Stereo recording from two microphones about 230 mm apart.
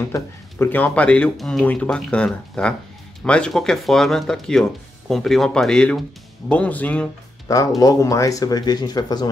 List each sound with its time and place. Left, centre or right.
0.0 s speech: centre